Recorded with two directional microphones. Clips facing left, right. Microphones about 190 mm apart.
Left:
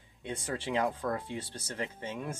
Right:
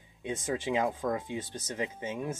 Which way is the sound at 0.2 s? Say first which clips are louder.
Right 4 dB; 15° right (ahead or behind).